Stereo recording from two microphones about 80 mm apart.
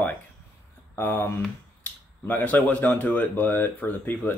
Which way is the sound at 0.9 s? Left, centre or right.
Left.